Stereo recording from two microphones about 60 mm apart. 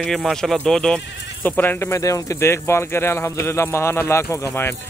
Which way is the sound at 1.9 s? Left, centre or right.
Left.